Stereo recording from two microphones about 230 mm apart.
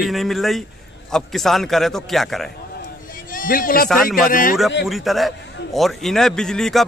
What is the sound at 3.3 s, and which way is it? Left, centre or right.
A man's voice, left.